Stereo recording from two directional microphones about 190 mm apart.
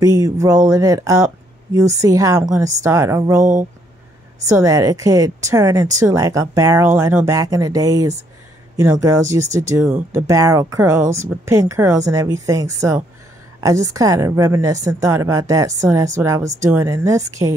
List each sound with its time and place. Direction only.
0.0 s a woman's voice: 20° right (ahead or behind)
4.6 s a woman's voice: 20° right (ahead or behind)